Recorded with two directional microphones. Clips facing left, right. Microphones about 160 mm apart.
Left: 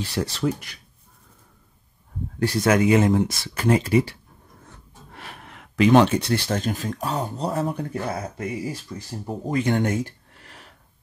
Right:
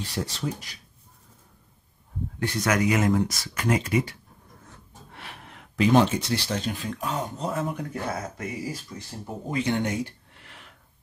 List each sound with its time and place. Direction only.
0.0 s speech: 75° left (ahead or behind)
2.4 s speech: 30° left (ahead or behind)
5.1 s gasp: 40° left (ahead or behind)
5.5 s speech: 70° left (ahead or behind); by 8.5 s 30° left (ahead or behind)
9.5 s a sound: 50° left (ahead or behind)